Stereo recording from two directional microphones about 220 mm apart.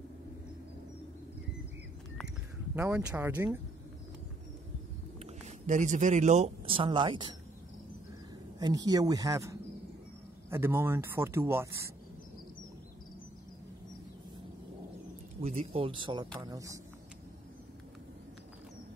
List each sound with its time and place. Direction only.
2.7 s speech: 10° right (ahead or behind)
5.2 s speech: 35° right (ahead or behind)
8.5 s speech: 15° right (ahead or behind)
15.4 s speech: 30° right (ahead or behind)